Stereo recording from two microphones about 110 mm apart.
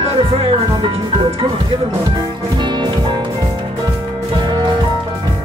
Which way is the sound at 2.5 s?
45° right (ahead or behind).